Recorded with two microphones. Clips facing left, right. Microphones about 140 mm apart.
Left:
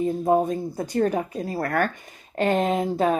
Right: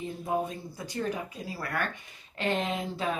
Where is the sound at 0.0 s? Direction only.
45° left (ahead or behind).